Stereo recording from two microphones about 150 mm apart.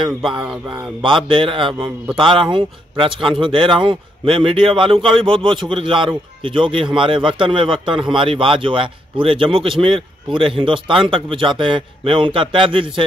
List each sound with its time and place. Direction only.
0.0 s a man's voice: 35° right (ahead or behind)